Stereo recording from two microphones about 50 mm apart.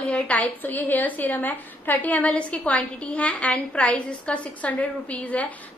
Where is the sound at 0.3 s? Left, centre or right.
Left.